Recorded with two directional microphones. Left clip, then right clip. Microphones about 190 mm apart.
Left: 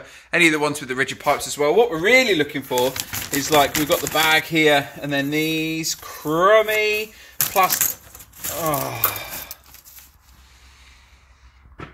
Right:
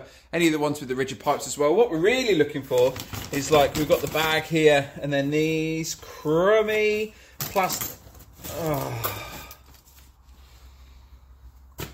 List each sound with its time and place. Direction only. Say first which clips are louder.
0.1 s speech: left 6 dB; 5° left (ahead or behind); by 2.9 s 25° left (ahead or behind)
2.9 s speech: left 4 dB; 10° left (ahead or behind)
3.3 s speech: left 2 dB; 20° left (ahead or behind)
8.5 s speech: left 4 dB; 15° left (ahead or behind)